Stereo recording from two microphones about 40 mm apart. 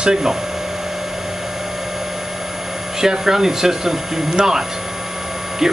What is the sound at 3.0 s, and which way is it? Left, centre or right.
Speech, centre.